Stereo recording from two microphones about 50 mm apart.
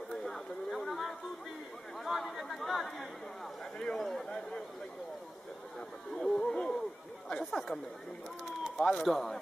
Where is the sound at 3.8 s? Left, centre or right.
Centre.